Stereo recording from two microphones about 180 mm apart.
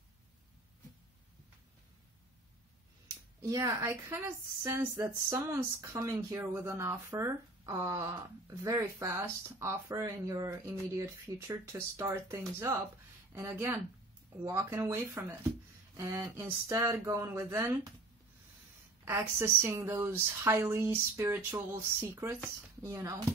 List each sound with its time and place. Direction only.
3.4 s a woman's voice: 20° right (ahead or behind)
19.0 s a woman's voice: 15° right (ahead or behind)